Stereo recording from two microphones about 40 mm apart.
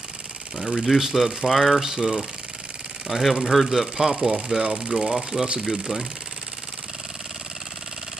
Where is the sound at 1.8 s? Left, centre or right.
Centre.